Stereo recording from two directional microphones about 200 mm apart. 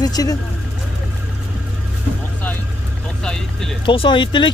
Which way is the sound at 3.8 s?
25° left (ahead or behind).